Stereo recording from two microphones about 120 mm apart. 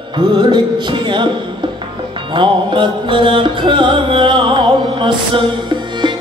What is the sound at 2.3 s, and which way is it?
Music, 45° right (ahead or behind).